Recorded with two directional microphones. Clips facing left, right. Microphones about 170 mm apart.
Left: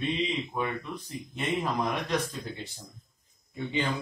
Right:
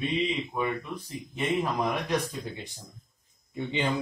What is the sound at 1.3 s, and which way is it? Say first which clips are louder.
Speech: right 2 dB; 10° right (ahead or behind).